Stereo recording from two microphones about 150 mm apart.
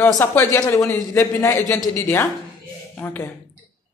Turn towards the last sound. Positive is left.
turn(degrees=15)  # may be behind; listen again after turning